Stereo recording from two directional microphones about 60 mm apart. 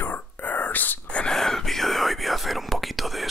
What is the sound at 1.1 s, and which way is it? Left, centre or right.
Whispering, centre.